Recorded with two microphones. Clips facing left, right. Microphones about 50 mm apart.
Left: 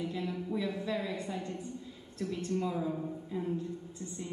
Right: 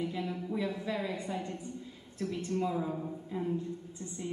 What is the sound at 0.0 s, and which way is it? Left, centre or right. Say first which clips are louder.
A woman's voice: right 1 dB; centre.